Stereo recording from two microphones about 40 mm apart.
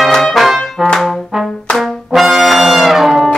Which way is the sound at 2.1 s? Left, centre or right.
Centre.